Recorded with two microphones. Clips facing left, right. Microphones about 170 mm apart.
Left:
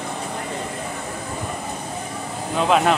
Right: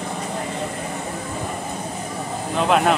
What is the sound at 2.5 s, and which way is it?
Speech, centre (ahead or behind).